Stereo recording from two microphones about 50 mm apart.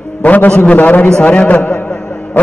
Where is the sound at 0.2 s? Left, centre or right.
Left.